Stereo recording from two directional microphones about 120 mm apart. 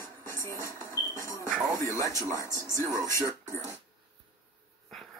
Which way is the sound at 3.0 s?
25° left (ahead or behind).